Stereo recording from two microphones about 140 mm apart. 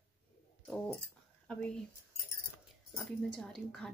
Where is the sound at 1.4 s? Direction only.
5° left (ahead or behind).